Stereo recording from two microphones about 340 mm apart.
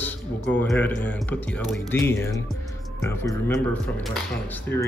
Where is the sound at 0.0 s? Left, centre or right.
Centre.